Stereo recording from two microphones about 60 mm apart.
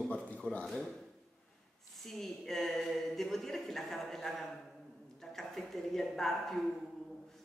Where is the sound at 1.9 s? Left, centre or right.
Centre.